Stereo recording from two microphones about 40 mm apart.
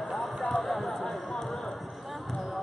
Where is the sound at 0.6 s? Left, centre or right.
Centre.